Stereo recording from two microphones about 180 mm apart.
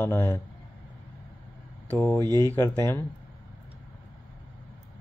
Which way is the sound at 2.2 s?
20° right (ahead or behind).